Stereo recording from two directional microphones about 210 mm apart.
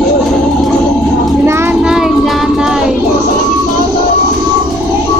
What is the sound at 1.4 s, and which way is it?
Child singing, 10° right (ahead or behind).